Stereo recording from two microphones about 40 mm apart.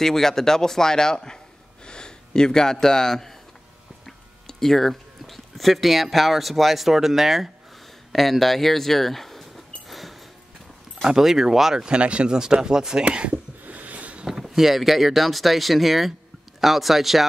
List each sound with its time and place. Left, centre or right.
0.0 s a man's voice: centre
8.1 s a sound: centre
11.1 s speech: centre
12.0 s speech: right
13.0 s speech: right
13.7 s a sound: right
14.2 s speech: centre